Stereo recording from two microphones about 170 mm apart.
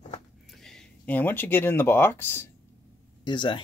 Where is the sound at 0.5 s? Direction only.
5° left (ahead or behind).